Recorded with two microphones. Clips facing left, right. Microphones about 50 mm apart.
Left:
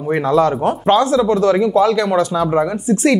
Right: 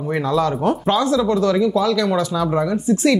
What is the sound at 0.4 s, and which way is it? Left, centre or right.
Speech, left.